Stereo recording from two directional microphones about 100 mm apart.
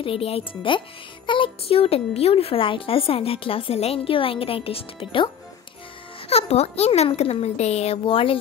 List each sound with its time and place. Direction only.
0.0 s a child's voice: 70° left (ahead or behind)
6.2 s a child's voice: 90° left; by 8.4 s 65° left (ahead or behind)